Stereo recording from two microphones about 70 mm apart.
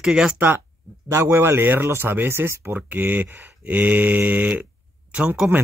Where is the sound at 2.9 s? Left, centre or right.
Right.